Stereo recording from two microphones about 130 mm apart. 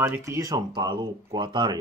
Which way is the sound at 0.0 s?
20° right (ahead or behind).